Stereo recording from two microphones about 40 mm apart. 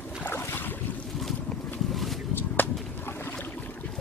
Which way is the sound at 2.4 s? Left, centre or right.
Left.